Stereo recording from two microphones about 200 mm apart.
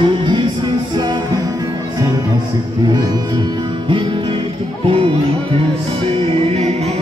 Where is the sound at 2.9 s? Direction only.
20° right (ahead or behind).